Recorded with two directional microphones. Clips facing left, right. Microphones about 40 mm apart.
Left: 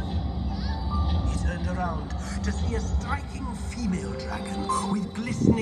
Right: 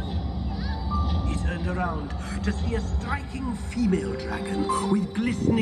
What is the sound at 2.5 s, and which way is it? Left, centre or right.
Speech, right.